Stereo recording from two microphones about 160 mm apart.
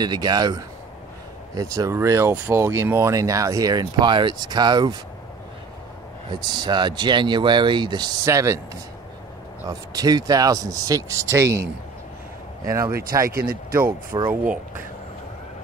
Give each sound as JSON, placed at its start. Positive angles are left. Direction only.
{"t": 0.0, "sound": "speech", "side_deg": -25}
{"t": 6.4, "sound": "speech", "side_deg": -25}
{"t": 9.7, "sound": "speech", "side_deg": -25}
{"t": 12.6, "sound": "speech", "side_deg": -20}
{"t": 13.3, "sound": "speech", "side_deg": -70}
{"t": 14.2, "sound": "speech", "side_deg": -10}